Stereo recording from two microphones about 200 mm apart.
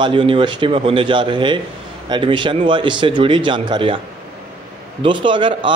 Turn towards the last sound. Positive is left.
turn(degrees=-25)  # may be behind; listen again after turning